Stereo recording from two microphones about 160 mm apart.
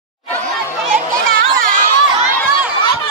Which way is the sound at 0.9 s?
60° right (ahead or behind).